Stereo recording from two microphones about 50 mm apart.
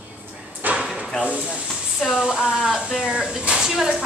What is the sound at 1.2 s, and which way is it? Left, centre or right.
A woman's voice, right.